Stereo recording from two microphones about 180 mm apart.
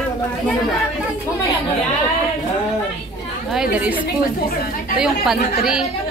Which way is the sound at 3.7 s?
10° right (ahead or behind).